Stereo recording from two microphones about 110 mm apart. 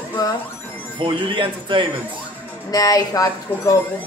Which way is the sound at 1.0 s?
55° right (ahead or behind).